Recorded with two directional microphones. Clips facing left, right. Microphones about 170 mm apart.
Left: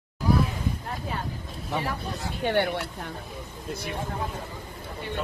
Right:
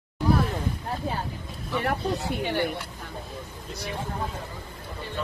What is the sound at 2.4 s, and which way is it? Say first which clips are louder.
Speech: left 5 dB; 65° left (ahead or behind).